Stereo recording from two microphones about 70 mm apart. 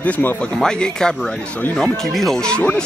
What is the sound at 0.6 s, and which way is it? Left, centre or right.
Speech, centre.